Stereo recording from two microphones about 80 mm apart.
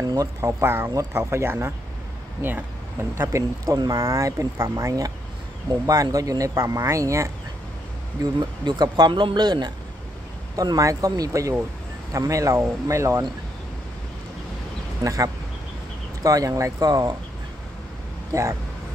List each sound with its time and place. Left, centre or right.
0.0 s speech: right
0.4 s speech: right
3.6 s speech: right
8.2 s speech: right
10.5 s speech: right
15.0 s speech: right
18.3 s speech: right